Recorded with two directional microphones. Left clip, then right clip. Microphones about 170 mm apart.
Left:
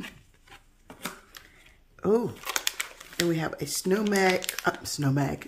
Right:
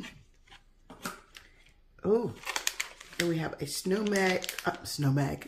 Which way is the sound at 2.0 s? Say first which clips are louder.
Left 3 dB; 30° left (ahead or behind).